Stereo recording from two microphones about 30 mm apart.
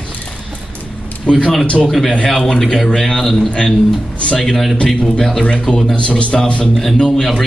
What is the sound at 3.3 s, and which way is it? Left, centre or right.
Speech, left.